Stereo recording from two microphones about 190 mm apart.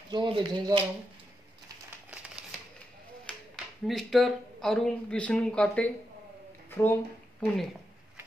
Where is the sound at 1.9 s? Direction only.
5° right (ahead or behind).